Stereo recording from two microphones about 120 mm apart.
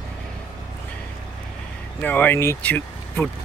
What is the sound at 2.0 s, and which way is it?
Speech, 15° left (ahead or behind).